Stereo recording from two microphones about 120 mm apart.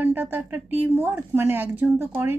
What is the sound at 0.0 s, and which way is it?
A woman's voice, 15° right (ahead or behind).